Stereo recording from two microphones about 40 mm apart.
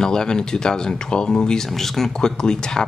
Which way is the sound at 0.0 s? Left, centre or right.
Centre.